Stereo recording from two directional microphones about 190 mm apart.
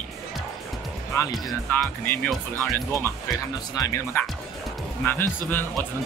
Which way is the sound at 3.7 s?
15° left (ahead or behind).